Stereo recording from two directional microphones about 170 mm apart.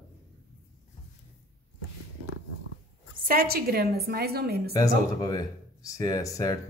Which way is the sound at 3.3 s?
60° right (ahead or behind).